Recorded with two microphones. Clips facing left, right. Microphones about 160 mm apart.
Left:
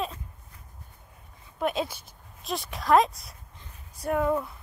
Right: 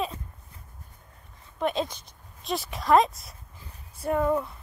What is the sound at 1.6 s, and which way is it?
Speech, 5° left (ahead or behind).